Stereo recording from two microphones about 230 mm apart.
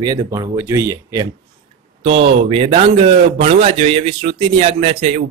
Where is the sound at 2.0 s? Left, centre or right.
Right.